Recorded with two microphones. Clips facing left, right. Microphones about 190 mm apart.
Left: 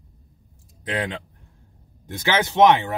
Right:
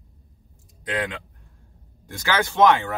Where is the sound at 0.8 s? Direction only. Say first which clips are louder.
Left 1 dB; 30° left (ahead or behind).